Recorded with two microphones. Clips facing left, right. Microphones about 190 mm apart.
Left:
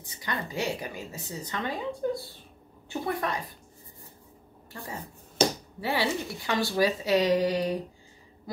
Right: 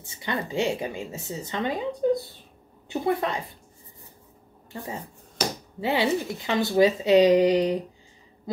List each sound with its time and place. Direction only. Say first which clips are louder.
0.0 s a woman's voice: right 4 dB; 25° right (ahead or behind)
5.4 s finger snapping: left 4 dB; 25° left (ahead or behind)
5.8 s a woman's voice: right 5 dB; 20° right (ahead or behind)